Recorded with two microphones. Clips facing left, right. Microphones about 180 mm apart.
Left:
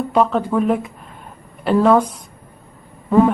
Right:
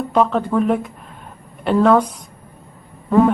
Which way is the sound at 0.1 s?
Centre (ahead or behind).